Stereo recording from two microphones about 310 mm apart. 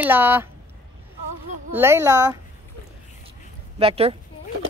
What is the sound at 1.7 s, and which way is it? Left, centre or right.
Speech, centre.